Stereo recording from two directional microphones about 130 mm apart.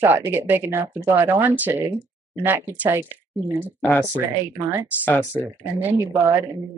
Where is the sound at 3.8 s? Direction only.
10° left (ahead or behind).